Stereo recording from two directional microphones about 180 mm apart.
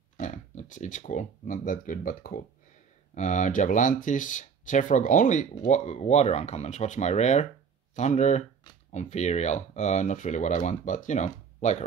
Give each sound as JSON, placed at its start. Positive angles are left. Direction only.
{"t": 0.2, "sound": "speech", "side_deg": 45}